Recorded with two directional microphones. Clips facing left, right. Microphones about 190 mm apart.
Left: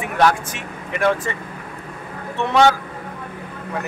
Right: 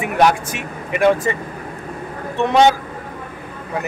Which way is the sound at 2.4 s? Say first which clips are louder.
Right 2 dB; 20° right (ahead or behind).